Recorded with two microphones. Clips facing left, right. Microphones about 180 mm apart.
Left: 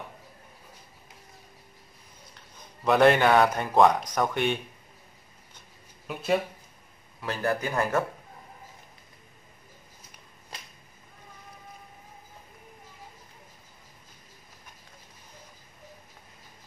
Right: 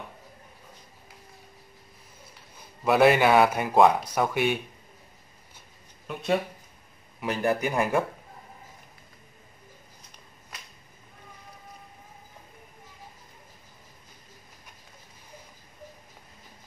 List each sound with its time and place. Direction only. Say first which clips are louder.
2.5 s a man's voice: even; 5° right (ahead or behind)
6.0 s speech: even; centre (ahead or behind)
7.2 s a man's voice: right 3 dB; 15° right (ahead or behind)